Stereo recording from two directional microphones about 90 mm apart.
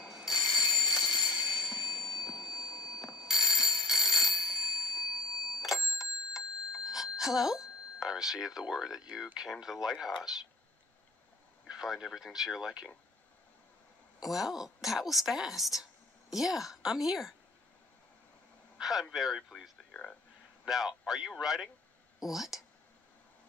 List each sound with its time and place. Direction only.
0.0 s bicycle bell: 5° right (ahead or behind)
1.0 s a sound: 55° left (ahead or behind)
3.3 s a sound: 5° right (ahead or behind)
4.6 s bell: 55° left (ahead or behind)
5.6 s clock: 5° right (ahead or behind)
9.3 s speech: 5° right (ahead or behind)
11.6 s speech: 5° right (ahead or behind)
14.2 s a woman's voice: 5° right (ahead or behind)
18.8 s speech: 5° right (ahead or behind)
19.9 s a sound: 15° left (ahead or behind)
20.6 s speech: 5° right (ahead or behind)